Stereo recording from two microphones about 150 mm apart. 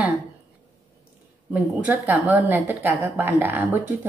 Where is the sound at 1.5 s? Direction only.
10° right (ahead or behind).